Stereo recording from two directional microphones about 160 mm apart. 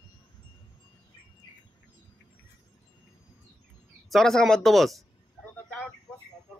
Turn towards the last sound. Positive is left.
turn(degrees=0)  # may be behind; listen again after turning